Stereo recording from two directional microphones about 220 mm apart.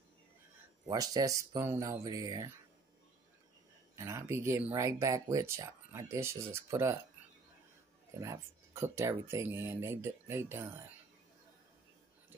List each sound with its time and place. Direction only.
0.8 s speech: 15° right (ahead or behind)
3.9 s speech: 15° right (ahead or behind)
8.2 s speech: 15° right (ahead or behind)